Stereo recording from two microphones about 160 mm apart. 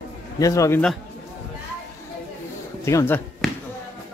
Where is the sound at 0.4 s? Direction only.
20° left (ahead or behind).